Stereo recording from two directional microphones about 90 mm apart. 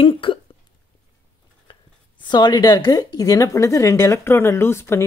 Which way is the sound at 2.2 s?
55° left (ahead or behind).